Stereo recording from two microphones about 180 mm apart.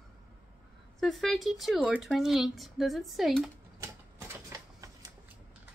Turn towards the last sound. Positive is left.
turn(degrees=-20)  # may be behind; listen again after turning